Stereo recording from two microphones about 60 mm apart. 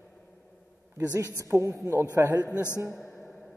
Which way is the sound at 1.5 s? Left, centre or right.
Right.